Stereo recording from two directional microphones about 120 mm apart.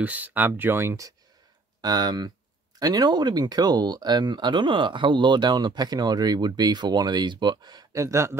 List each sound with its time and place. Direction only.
0.0 s speech: 15° right (ahead or behind)
1.8 s speech: 35° right (ahead or behind)